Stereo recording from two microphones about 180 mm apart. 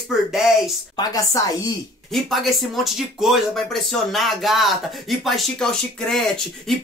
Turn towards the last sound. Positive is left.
turn(degrees=0)  # may be behind; listen again after turning